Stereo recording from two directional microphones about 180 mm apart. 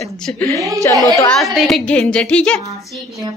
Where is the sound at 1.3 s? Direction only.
Centre (ahead or behind).